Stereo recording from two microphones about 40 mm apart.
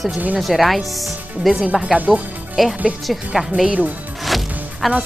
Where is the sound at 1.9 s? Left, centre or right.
Right.